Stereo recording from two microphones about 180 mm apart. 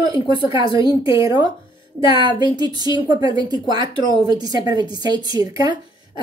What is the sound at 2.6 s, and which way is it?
Speech, 25° right (ahead or behind).